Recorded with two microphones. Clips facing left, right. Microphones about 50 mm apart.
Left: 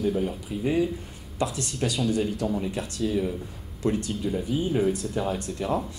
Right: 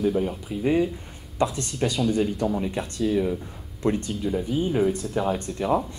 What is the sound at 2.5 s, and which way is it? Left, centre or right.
Speech, centre.